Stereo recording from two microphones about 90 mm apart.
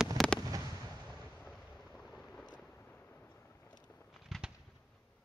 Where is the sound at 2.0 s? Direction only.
5° left (ahead or behind).